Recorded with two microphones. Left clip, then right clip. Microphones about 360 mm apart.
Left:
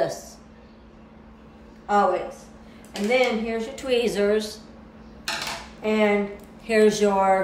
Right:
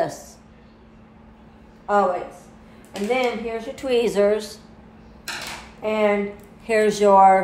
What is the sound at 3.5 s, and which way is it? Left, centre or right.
A woman's voice, centre.